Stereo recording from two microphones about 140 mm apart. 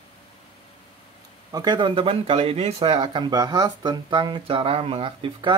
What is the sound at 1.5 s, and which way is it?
Speech, 30° right (ahead or behind).